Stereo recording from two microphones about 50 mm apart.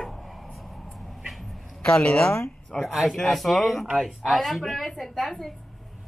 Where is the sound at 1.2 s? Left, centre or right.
Centre.